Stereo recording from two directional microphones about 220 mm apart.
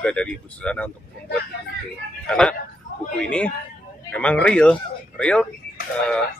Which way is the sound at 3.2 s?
5° left (ahead or behind).